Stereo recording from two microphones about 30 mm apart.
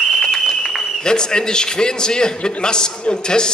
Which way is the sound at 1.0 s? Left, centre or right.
Left.